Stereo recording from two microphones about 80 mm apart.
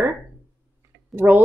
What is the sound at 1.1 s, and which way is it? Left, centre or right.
Speech, right.